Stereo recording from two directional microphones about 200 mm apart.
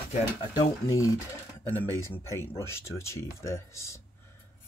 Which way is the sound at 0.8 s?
15° left (ahead or behind).